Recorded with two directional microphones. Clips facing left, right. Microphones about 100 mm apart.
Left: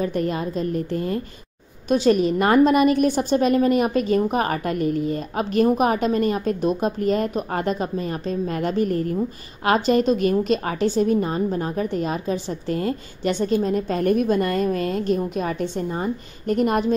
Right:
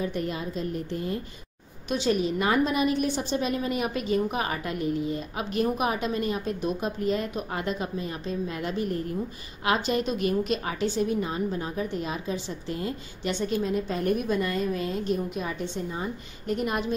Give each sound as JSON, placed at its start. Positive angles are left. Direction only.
{"t": 0.0, "sound": "a woman's voice", "side_deg": 50}